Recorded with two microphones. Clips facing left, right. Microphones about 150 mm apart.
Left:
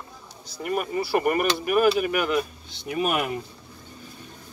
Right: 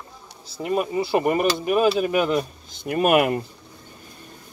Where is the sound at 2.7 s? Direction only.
50° right (ahead or behind).